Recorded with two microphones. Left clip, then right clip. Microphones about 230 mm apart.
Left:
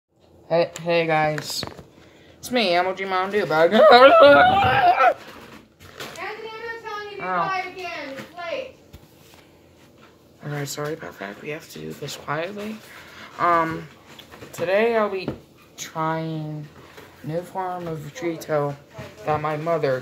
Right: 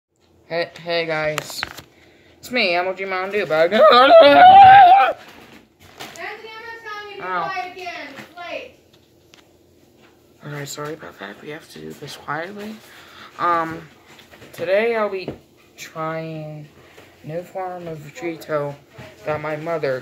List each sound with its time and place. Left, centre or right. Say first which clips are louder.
0.5 s speech: left 3 dB; right
1.0 s speech: left 2 dB; centre
2.4 s speech: right 1 dB; centre
4.1 s speech: right 5 dB; right
7.2 s a child's voice: even; centre
10.4 s speech: left 1 dB; centre